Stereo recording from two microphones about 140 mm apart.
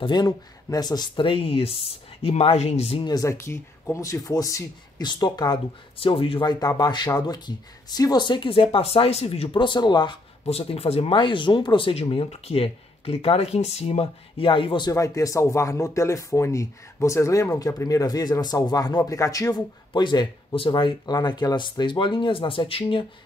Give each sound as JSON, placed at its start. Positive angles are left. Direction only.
{"t": 0.0, "sound": "speech", "side_deg": 30}
{"t": 3.1, "sound": "speech", "side_deg": 20}
{"t": 6.6, "sound": "speech", "side_deg": 25}
{"t": 10.4, "sound": "speech", "side_deg": 45}
{"t": 14.9, "sound": "speech", "side_deg": 25}